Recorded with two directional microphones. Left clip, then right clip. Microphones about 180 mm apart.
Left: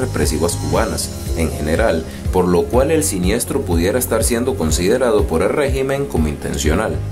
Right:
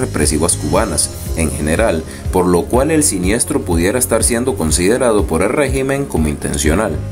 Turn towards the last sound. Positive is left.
turn(degrees=-20)  # may be behind; listen again after turning